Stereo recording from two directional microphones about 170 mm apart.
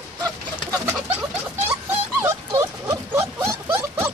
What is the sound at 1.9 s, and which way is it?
Dog, 15° right (ahead or behind).